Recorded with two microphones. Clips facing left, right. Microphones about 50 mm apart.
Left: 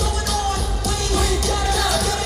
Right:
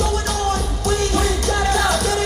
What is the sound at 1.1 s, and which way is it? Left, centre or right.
Music, right.